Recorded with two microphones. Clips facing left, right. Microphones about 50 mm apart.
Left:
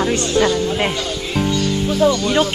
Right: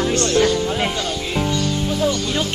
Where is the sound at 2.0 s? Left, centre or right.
Left.